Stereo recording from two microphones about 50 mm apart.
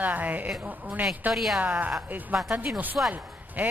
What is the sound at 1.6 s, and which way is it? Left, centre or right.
A woman's voice, right.